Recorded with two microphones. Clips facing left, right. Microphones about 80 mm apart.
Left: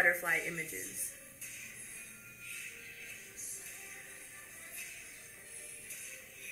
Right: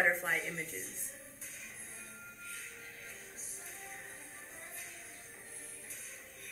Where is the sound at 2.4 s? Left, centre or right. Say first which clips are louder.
Left 1 dB; right.